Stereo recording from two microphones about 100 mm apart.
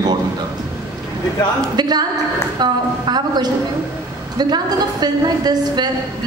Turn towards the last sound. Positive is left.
turn(degrees=-40)  # may be behind; listen again after turning